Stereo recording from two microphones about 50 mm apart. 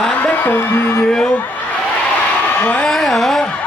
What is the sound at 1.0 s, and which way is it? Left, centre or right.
Speech, centre.